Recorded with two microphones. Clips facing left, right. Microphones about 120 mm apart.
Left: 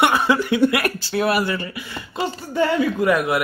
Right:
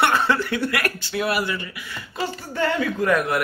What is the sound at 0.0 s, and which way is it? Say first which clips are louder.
Speech: left 2 dB; 10° left (ahead or behind).